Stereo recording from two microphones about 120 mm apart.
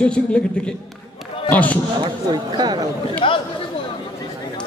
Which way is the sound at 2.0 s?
35° right (ahead or behind).